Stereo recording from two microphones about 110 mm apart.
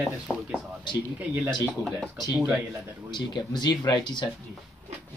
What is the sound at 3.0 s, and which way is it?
Speech, 40° left (ahead or behind).